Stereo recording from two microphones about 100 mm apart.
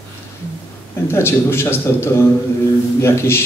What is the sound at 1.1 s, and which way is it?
A man's voice, 25° left (ahead or behind).